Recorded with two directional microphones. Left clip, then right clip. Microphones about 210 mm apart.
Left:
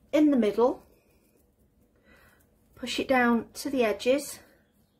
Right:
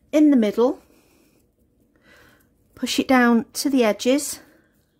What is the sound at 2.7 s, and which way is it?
Speech, 55° right (ahead or behind).